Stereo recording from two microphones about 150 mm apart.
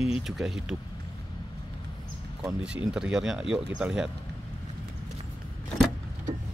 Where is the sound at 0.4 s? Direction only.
5° right (ahead or behind).